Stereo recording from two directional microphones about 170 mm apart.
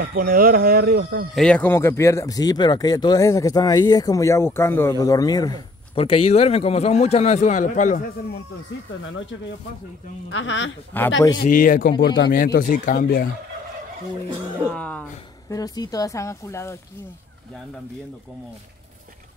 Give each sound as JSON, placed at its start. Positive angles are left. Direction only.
{"t": 0.0, "sound": "speech", "side_deg": -60}
{"t": 1.3, "sound": "speech", "side_deg": 5}
{"t": 10.4, "sound": "speech", "side_deg": 90}
{"t": 10.9, "sound": "speech", "side_deg": 10}
{"t": 11.4, "sound": "speech", "side_deg": 50}
{"t": 14.7, "sound": "speech", "side_deg": 10}
{"t": 15.5, "sound": "speech", "side_deg": 20}